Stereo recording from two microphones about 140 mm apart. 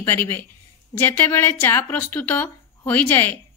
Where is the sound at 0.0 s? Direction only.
15° left (ahead or behind).